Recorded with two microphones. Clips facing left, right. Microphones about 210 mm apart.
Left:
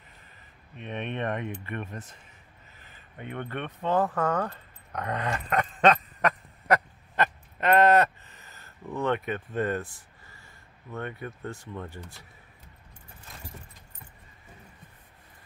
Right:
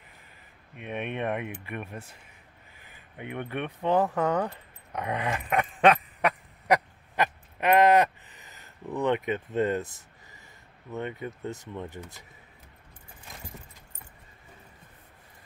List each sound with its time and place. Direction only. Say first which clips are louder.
0.7 s speech: right 1 dB; 10° right (ahead or behind)
2.8 s a sound: right 1 dB; 15° right (ahead or behind)
10.9 s speech: right 2 dB; 20° right (ahead or behind)